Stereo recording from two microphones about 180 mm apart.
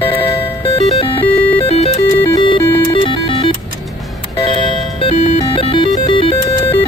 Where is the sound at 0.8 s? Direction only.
35° left (ahead or behind).